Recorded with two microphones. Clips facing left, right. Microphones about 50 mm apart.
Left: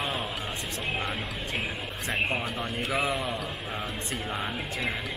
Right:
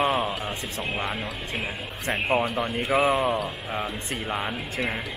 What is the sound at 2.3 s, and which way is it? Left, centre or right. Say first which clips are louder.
Speech: right 7 dB; right.